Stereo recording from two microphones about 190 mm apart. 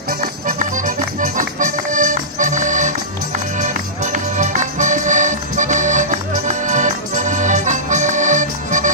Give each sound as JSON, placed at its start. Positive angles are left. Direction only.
{"t": 0.2, "sound": "music", "side_deg": -40}